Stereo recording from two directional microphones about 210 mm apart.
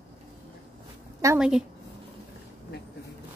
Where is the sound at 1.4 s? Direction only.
5° right (ahead or behind).